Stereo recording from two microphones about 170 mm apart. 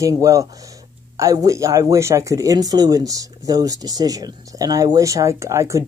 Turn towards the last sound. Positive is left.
turn(degrees=-15)  # may be behind; listen again after turning